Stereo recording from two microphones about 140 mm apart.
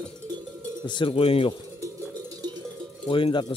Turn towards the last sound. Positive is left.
turn(degrees=35)  # may be behind; listen again after turning